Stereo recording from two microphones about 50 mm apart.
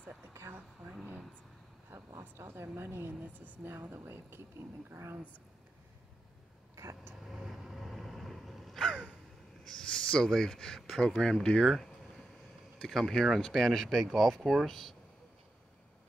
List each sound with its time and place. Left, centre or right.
0.3 s speech: right
1.9 s speech: right
6.7 s vehicle: right
7.2 s a sound: centre
9.7 s speech: centre
12.7 s speech: centre